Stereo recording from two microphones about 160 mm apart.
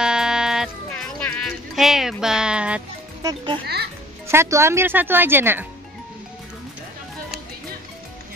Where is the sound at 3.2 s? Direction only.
30° right (ahead or behind).